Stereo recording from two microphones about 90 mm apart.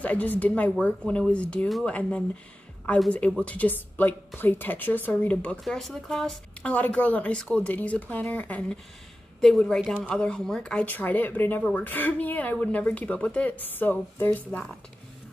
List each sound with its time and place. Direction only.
0.0 s speech: 20° left (ahead or behind)
5.6 s speech: centre (ahead or behind)
6.7 s speech: 15° left (ahead or behind)
14.5 s speech: 10° left (ahead or behind)